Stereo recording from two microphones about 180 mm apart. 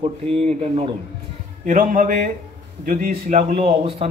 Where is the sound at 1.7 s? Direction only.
45° right (ahead or behind).